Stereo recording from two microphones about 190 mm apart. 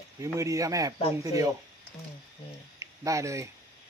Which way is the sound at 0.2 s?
15° right (ahead or behind).